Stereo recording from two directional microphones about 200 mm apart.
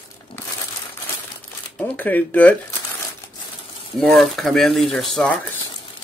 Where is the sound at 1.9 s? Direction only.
10° left (ahead or behind).